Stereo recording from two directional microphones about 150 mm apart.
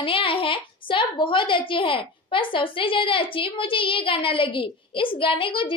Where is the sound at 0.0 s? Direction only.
35° left (ahead or behind).